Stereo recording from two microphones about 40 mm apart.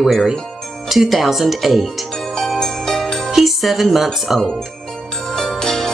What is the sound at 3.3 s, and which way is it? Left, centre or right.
Speech, centre.